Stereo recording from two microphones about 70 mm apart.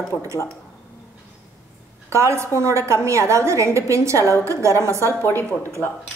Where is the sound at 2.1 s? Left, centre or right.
Right.